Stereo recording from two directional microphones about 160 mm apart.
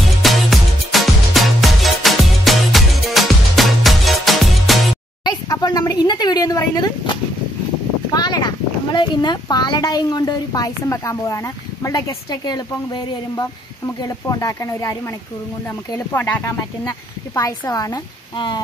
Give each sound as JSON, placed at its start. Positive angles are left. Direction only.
{"t": 0.2, "sound": "music", "side_deg": 0}
{"t": 5.2, "sound": "a sound", "side_deg": 25}
{"t": 8.1, "sound": "speech", "side_deg": 25}